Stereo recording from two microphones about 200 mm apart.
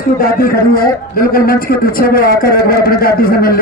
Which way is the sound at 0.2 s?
45° left (ahead or behind).